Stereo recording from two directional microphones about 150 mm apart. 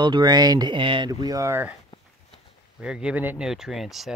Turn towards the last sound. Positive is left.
turn(degrees=0)  # may be behind; listen again after turning